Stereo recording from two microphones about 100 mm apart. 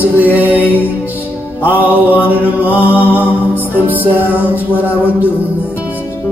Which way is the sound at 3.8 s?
20° right (ahead or behind).